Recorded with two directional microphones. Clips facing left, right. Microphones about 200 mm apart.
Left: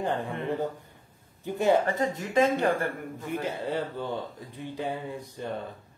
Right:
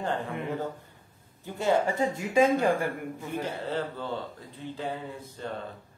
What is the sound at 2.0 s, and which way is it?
Speech, 10° right (ahead or behind).